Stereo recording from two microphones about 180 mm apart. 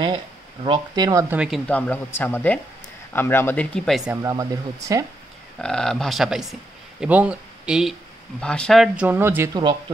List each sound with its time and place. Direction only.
0.7 s speech: 20° right (ahead or behind)
1.3 s speech: 5° right (ahead or behind)
1.7 s speech: 10° left (ahead or behind)
4.2 s speech: 20° right (ahead or behind)
5.6 s speech: 5° left (ahead or behind); by 9.6 s 15° right (ahead or behind)